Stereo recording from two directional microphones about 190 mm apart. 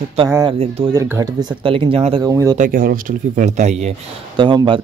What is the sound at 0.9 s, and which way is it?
Speech, 15° right (ahead or behind).